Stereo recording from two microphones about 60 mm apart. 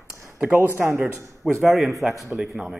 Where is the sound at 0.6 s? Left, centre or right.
Right.